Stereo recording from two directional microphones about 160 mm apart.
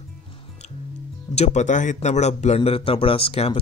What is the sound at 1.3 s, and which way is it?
Speech, 45° left (ahead or behind).